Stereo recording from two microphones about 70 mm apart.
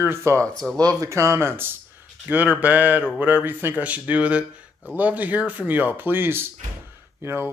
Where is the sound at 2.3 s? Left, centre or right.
Right.